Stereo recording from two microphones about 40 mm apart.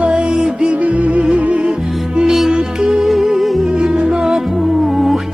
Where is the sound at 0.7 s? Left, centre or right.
Right.